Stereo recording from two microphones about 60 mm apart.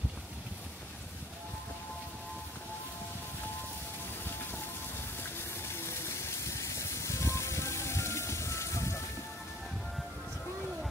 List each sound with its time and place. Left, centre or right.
5.8 s music: left